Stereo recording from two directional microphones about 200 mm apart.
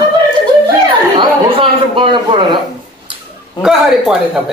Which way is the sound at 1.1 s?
25° right (ahead or behind).